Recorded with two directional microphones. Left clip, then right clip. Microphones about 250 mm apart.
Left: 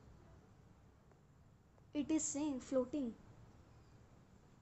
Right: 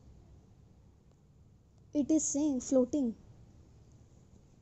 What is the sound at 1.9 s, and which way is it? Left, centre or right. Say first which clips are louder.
A woman's voice: right 9 dB; right.